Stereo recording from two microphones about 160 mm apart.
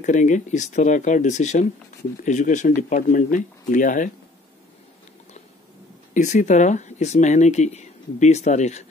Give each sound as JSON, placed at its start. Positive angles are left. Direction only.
{"t": 0.0, "sound": "speech", "side_deg": 50}
{"t": 6.1, "sound": "speech", "side_deg": 50}